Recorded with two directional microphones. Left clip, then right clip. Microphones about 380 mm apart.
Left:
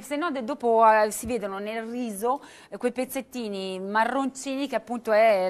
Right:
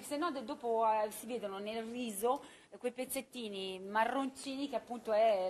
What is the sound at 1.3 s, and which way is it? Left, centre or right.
Speech, left.